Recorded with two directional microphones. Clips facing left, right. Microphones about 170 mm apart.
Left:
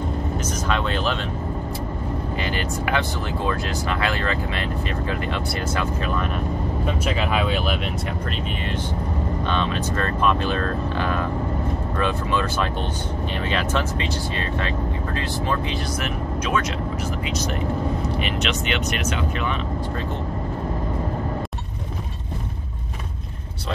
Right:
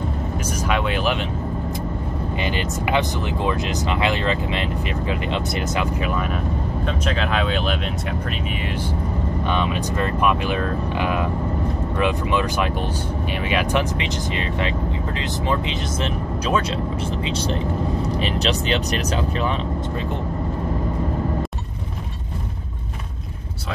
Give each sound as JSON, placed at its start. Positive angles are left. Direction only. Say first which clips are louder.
{"t": 0.7, "sound": "vehicle", "louder": "right 2 dB", "side_deg": -10}
{"t": 2.4, "sound": "speech", "louder": "right 3 dB", "side_deg": -15}
{"t": 7.1, "sound": "speech", "louder": "even", "side_deg": 5}
{"t": 9.5, "sound": "speech", "louder": "right 2 dB", "side_deg": -15}
{"t": 18.2, "sound": "speech", "louder": "right 3 dB", "side_deg": -35}